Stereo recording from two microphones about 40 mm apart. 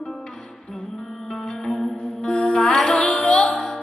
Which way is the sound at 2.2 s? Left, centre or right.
Left.